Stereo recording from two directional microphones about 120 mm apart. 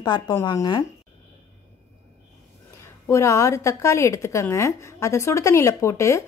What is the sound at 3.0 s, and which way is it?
Speech, 25° left (ahead or behind).